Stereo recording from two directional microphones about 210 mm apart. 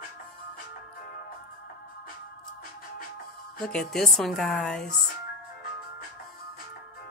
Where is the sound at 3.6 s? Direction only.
5° left (ahead or behind).